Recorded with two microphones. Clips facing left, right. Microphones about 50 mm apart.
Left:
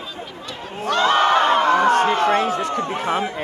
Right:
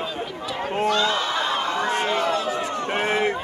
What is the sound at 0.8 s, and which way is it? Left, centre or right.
Speech, left.